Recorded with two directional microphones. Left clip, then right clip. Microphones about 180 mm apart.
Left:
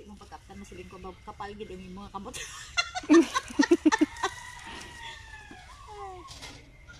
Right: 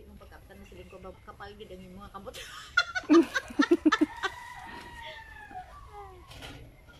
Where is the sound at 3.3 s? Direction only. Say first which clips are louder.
Left 1 dB; 45° left (ahead or behind).